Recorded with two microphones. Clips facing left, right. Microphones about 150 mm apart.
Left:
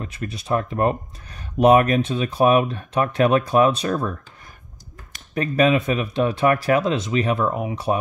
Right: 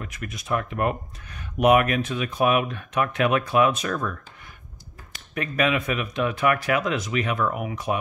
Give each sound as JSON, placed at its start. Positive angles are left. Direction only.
{"t": 0.0, "sound": "speech", "side_deg": 30}
{"t": 5.3, "sound": "speech", "side_deg": 30}